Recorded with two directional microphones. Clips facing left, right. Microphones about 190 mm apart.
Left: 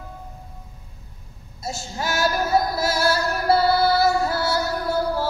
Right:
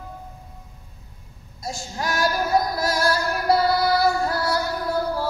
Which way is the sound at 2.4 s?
5° left (ahead or behind).